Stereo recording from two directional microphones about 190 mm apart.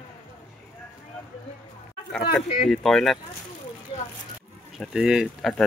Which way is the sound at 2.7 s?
Centre (ahead or behind).